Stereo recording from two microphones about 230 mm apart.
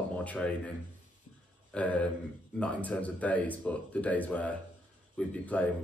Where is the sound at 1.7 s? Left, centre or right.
Centre.